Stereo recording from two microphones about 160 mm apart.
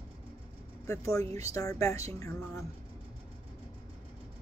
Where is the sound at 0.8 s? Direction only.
20° left (ahead or behind).